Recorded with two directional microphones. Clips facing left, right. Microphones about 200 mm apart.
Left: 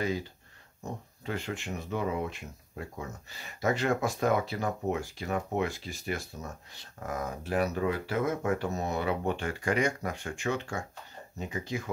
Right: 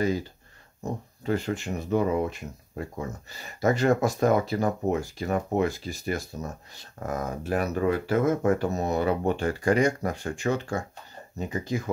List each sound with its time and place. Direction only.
1.2 s speech: 40° right (ahead or behind)